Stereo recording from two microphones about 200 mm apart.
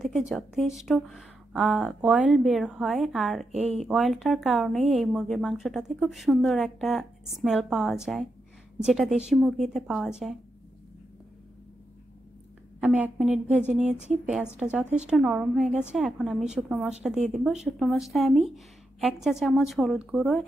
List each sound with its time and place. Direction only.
0.0 s a woman's voice: centre (ahead or behind)
3.5 s speech: 30° right (ahead or behind)
3.8 s a woman's voice: centre (ahead or behind)
12.8 s a woman's voice: 5° right (ahead or behind)